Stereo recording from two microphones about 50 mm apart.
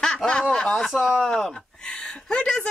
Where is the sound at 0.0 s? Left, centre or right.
Centre.